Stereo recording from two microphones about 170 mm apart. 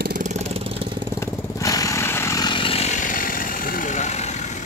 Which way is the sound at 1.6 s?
20° left (ahead or behind).